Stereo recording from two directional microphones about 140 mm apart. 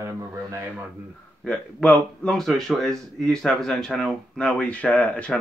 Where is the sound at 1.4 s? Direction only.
10° left (ahead or behind).